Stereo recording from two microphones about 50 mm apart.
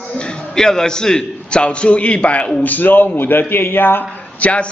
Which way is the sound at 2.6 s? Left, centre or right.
Left.